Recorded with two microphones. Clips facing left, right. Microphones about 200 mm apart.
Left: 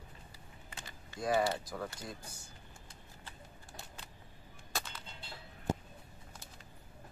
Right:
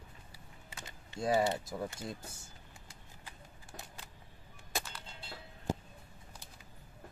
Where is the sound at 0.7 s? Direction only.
25° right (ahead or behind).